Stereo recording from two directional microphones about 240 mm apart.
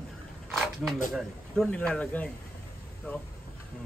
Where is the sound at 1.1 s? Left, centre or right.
Centre.